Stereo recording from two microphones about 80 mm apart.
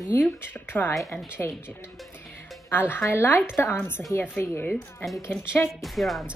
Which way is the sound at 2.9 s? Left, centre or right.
Left.